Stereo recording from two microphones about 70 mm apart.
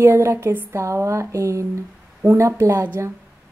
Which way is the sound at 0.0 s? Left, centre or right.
Right.